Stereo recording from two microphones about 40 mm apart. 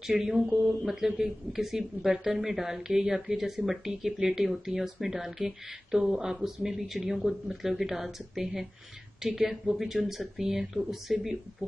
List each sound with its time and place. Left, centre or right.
0.0 s speech: centre